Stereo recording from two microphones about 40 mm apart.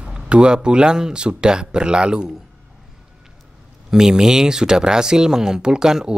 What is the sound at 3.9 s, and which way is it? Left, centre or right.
Speech, centre.